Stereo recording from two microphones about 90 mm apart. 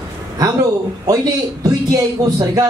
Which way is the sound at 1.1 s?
45° right (ahead or behind).